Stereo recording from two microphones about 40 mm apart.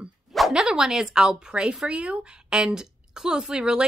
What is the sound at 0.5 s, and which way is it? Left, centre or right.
Speech, centre.